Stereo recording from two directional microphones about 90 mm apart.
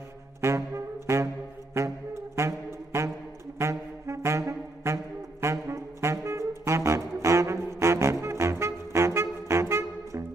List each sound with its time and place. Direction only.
0.4 s saxophone: 30° right (ahead or behind)
2.3 s music: 30° right (ahead or behind)
3.5 s saxophone: 30° right (ahead or behind)